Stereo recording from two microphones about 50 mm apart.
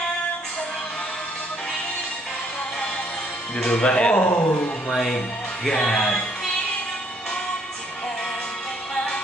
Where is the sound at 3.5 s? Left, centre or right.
Centre.